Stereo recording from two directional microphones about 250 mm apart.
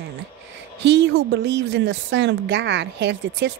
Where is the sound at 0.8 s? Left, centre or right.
Right.